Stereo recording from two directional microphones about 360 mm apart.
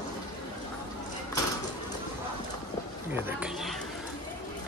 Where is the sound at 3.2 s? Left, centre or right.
Centre.